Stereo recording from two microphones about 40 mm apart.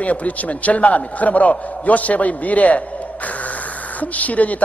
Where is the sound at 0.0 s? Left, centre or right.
Left.